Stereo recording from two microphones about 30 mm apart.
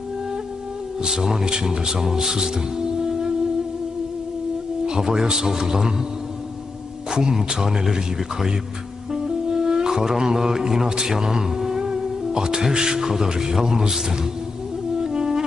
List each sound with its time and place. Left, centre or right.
1.0 s speech: centre
4.8 s speech: right
7.1 s speech: right
9.1 s speech: centre
15.0 s music: right